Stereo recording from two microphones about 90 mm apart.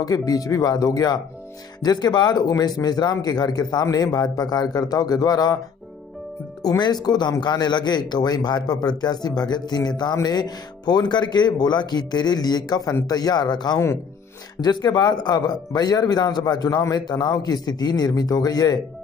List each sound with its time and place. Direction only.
0.0 s speech: 45° left (ahead or behind)
6.6 s speech: 45° left (ahead or behind)